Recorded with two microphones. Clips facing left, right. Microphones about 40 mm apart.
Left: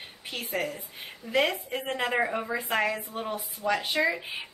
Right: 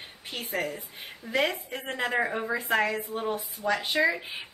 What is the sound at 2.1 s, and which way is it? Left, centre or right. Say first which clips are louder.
A woman's voice: even; centre.